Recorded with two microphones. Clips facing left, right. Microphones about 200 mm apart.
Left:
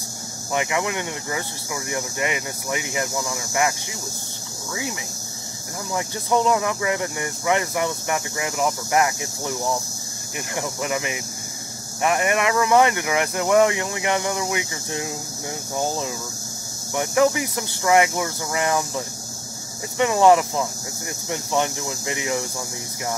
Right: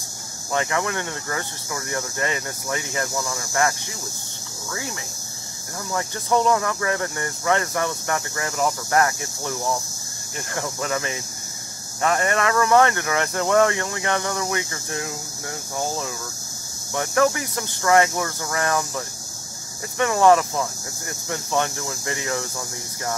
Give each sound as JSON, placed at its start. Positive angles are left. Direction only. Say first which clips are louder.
{"t": 0.5, "sound": "speech", "louder": "even", "side_deg": 15}
{"t": 5.9, "sound": "speech", "louder": "even", "side_deg": 15}
{"t": 16.9, "sound": "speech", "louder": "left 1 dB", "side_deg": 15}